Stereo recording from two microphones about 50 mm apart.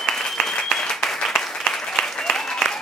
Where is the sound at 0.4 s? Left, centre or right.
Centre.